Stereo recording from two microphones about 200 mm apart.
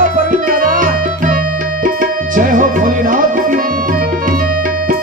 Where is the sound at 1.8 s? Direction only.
45° right (ahead or behind).